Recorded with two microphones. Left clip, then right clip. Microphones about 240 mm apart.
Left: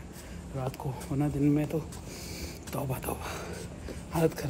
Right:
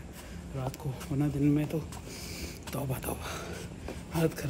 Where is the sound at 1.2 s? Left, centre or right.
Centre.